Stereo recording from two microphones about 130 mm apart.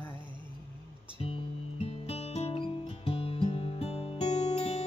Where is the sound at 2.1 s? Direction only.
55° left (ahead or behind).